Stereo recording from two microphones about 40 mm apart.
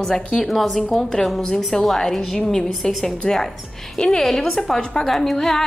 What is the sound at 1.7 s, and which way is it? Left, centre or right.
A woman's voice, centre.